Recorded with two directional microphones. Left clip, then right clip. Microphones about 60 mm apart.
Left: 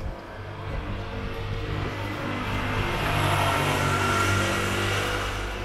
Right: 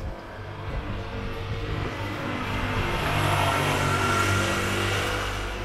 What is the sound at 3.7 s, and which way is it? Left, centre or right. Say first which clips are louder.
Vehicle: even; centre.